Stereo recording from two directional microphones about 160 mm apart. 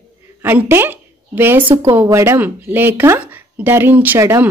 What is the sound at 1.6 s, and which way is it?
Speech, 30° right (ahead or behind).